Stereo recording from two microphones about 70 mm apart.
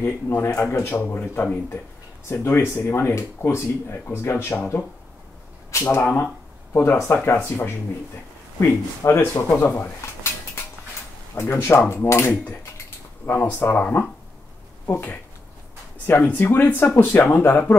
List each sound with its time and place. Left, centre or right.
0.0 s speech: left
5.7 s speech: left
9.6 s dishes: left
11.3 s speech: left
13.2 s speech: left